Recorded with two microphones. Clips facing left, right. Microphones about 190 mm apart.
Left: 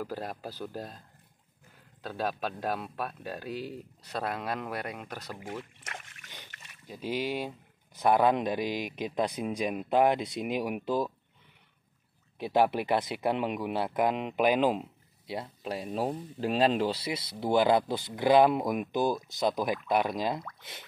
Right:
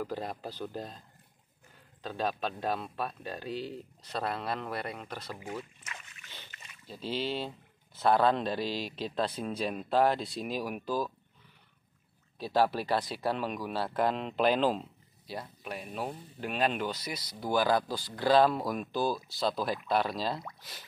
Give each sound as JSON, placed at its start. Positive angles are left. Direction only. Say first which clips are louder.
{"t": 0.0, "sound": "speech", "louder": "even", "side_deg": 10}
{"t": 2.0, "sound": "speech", "louder": "even", "side_deg": 10}
{"t": 6.9, "sound": "speech", "louder": "left 2 dB", "side_deg": 10}
{"t": 12.4, "sound": "speech", "louder": "left 2 dB", "side_deg": 20}
{"t": 15.3, "sound": "speech", "louder": "left 4 dB", "side_deg": 25}